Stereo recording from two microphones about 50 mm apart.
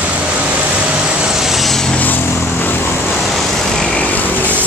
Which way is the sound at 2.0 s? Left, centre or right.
Left.